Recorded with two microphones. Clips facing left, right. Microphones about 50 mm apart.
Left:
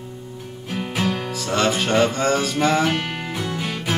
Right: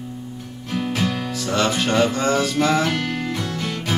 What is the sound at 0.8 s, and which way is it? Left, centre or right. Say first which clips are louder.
Music: even; centre.